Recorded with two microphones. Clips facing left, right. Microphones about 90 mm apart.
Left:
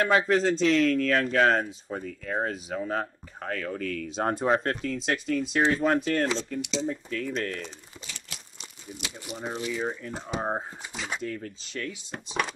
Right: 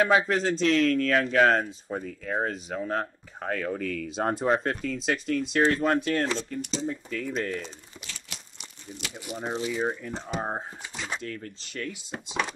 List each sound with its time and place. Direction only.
0.3 s speech: centre (ahead or behind)
6.6 s speech: 40° right (ahead or behind)
6.9 s speech: centre (ahead or behind)
9.5 s speech: 20° right (ahead or behind)
10.1 s speech: 5° left (ahead or behind)